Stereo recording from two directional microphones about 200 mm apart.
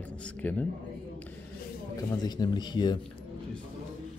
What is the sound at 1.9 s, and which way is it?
Speech, 20° left (ahead or behind).